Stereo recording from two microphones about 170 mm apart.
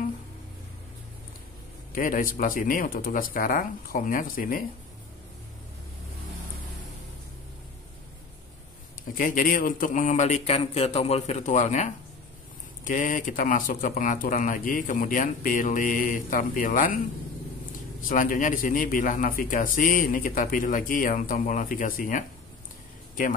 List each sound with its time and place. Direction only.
2.0 s speech: 55° left (ahead or behind)
9.1 s a man's voice: 55° left (ahead or behind)
18.0 s a man's voice: 50° left (ahead or behind)